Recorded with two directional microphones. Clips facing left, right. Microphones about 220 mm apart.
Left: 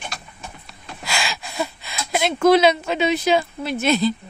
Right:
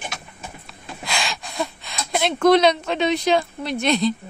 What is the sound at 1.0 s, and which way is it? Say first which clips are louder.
Speech: left 1 dB; 5° left (ahead or behind).